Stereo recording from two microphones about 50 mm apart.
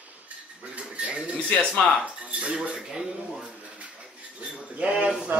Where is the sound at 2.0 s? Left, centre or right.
Right.